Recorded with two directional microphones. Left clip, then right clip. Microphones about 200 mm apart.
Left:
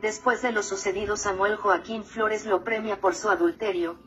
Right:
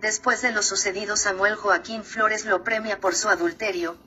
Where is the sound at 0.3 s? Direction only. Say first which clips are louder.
Right 3 dB; 20° right (ahead or behind).